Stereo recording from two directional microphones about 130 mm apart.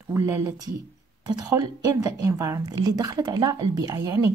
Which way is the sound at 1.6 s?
25° right (ahead or behind).